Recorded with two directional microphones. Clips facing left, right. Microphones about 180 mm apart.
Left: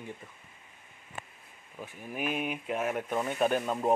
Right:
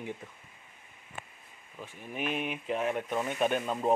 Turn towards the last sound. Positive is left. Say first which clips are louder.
# left 1 dB
turn(degrees=5)  # may be behind; listen again after turning